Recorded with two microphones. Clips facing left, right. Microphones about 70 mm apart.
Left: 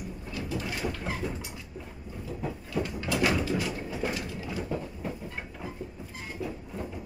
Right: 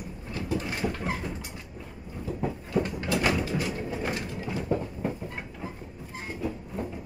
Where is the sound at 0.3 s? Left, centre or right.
Right.